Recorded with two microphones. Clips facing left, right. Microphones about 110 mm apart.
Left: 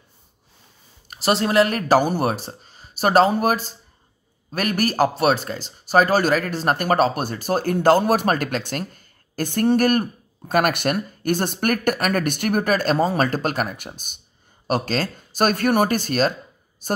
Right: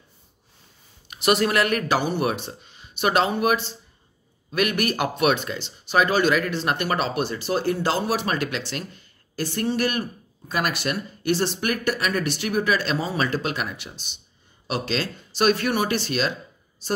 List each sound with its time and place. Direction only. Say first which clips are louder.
1.0 s speech: even; 35° left (ahead or behind)